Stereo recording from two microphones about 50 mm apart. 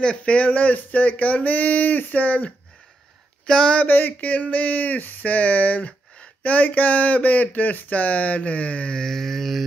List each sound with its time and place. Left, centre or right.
0.0 s speech: left
3.4 s speech: centre
3.7 s speech: left
8.9 s a sound: centre